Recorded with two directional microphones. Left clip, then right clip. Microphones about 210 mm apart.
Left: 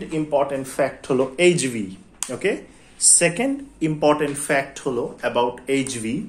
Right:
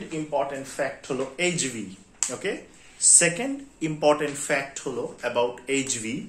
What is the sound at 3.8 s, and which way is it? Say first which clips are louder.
Speech: left 3 dB; 20° left (ahead or behind).